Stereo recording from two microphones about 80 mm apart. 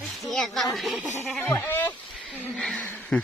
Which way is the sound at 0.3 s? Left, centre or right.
Centre.